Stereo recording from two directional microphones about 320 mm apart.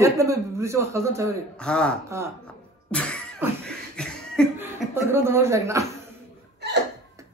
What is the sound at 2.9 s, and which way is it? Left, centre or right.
Cough, centre.